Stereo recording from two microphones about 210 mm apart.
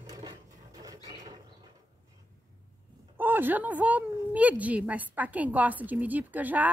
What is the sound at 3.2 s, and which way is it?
A woman's voice, 10° right (ahead or behind).